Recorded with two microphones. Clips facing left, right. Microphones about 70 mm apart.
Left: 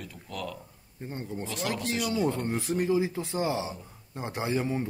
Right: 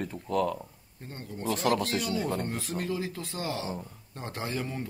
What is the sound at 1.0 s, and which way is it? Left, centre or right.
Speech, centre.